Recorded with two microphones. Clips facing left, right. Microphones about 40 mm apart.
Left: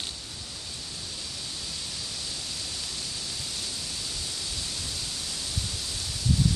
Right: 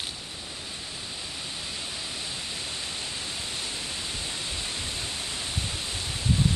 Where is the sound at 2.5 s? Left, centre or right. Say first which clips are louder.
Right 2 dB; right.